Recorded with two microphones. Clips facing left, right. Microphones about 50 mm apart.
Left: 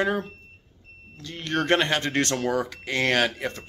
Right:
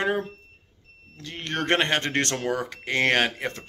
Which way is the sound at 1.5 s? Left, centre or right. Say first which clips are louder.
Left 1 dB; right.